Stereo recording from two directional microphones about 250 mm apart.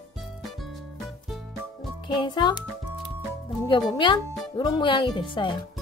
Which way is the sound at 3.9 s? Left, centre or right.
Centre.